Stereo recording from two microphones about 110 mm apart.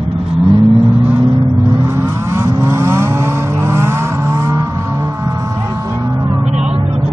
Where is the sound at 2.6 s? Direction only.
25° right (ahead or behind).